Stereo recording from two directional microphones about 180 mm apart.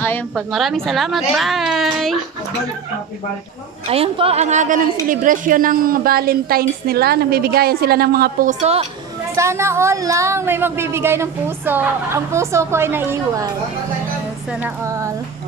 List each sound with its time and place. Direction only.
0.5 s a woman's voice: centre (ahead or behind)
3.8 s a woman's voice: 35° right (ahead or behind); by 8.5 s 60° right (ahead or behind)
8.5 s speech: 35° right (ahead or behind)
9.3 s a woman's voice: 15° right (ahead or behind)
14.6 s a woman's voice: 15° right (ahead or behind)